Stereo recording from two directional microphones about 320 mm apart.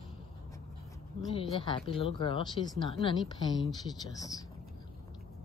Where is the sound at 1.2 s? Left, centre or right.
Centre.